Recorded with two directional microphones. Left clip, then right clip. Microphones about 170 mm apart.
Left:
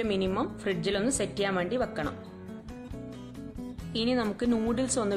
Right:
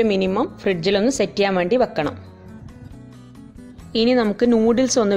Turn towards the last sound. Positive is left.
turn(degrees=-30)  # may be behind; listen again after turning